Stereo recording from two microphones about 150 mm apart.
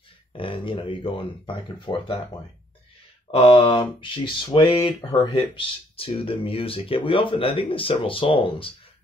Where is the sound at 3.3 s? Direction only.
40° left (ahead or behind).